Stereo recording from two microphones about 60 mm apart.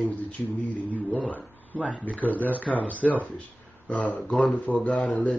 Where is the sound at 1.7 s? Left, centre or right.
Right.